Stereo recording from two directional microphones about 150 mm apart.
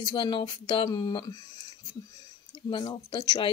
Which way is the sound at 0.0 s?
30° left (ahead or behind).